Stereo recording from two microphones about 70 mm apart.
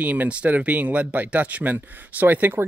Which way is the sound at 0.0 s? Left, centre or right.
Right.